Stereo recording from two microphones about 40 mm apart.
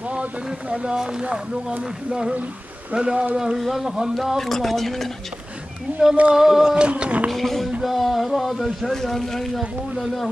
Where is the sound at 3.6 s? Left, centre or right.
Centre.